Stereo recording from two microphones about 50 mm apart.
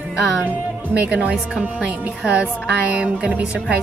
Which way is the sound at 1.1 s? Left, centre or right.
Right.